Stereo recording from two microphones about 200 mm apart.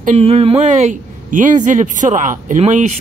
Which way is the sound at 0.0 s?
35° right (ahead or behind).